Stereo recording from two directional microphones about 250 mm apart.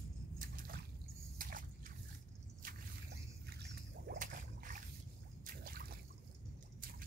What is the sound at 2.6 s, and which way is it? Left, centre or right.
Boat, right.